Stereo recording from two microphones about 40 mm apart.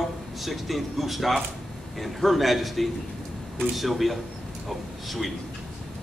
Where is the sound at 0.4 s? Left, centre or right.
Centre.